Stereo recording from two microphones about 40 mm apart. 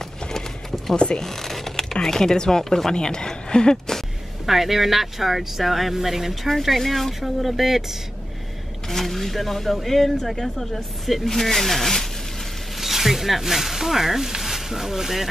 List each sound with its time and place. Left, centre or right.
0.3 s clip-clop: centre
0.9 s speech: left
1.2 s speech: centre
4.5 s speech: centre
8.9 s speech: centre
12.8 s speech: centre